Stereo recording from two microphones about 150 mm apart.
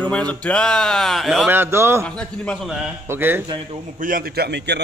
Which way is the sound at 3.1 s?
15° right (ahead or behind).